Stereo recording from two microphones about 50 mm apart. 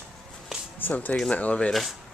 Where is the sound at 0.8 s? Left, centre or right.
Left.